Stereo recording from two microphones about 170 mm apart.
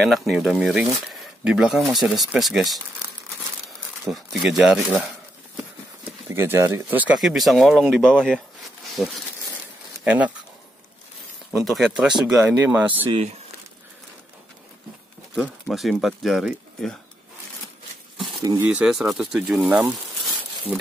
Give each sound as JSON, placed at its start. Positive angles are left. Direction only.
{"t": 0.0, "sound": "speech", "side_deg": 0}
{"t": 6.2, "sound": "speech", "side_deg": -15}
{"t": 11.5, "sound": "speech", "side_deg": 0}
{"t": 15.3, "sound": "speech", "side_deg": -5}
{"t": 18.1, "sound": "a sound", "side_deg": 0}
{"t": 18.4, "sound": "speech", "side_deg": -20}
{"t": 18.7, "sound": "speech", "side_deg": -5}